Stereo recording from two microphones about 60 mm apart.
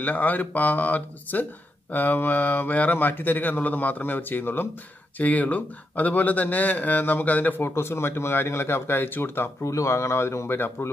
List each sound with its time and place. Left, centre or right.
0.0 s speech: left
9.6 s speech: left